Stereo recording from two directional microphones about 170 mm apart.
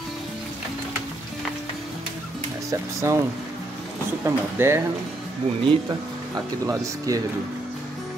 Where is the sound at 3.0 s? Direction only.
15° right (ahead or behind).